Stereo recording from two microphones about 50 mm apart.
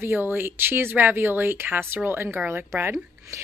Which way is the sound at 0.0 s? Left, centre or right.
Right.